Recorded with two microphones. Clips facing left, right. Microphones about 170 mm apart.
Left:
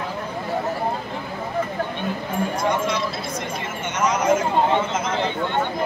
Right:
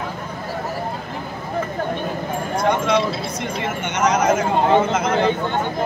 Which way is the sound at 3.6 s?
70° right (ahead or behind).